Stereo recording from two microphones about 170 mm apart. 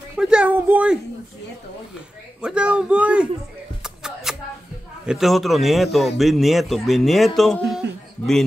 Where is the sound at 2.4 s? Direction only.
5° right (ahead or behind).